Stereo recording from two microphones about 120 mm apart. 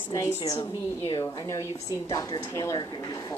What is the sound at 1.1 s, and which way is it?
A woman's voice, 25° left (ahead or behind).